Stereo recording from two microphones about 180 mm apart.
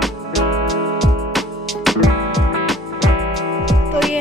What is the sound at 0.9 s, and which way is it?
Music, centre (ahead or behind).